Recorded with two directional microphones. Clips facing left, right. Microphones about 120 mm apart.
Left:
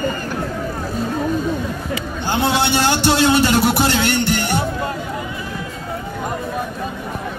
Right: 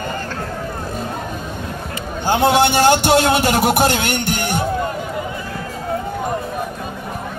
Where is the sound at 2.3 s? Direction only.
45° right (ahead or behind).